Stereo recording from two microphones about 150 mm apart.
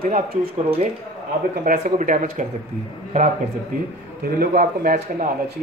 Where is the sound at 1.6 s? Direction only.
60° right (ahead or behind).